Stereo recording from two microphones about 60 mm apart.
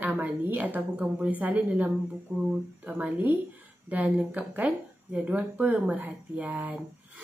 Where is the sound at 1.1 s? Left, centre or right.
Right.